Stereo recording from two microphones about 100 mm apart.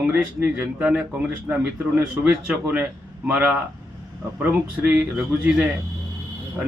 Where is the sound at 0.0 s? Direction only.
15° right (ahead or behind).